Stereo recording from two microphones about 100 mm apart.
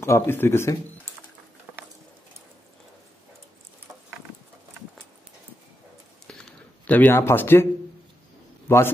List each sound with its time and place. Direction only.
0.0 s speech: 25° left (ahead or behind)
6.2 s a sound: 5° left (ahead or behind); by 7.6 s 25° left (ahead or behind)
8.6 s a man's voice: 25° left (ahead or behind)